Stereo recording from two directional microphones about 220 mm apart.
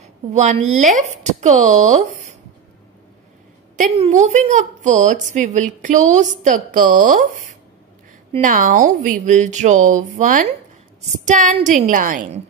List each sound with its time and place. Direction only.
0.0 s a woman's voice: 30° right (ahead or behind)
3.7 s a woman's voice: 30° right (ahead or behind)
8.3 s a woman's voice: 35° right (ahead or behind)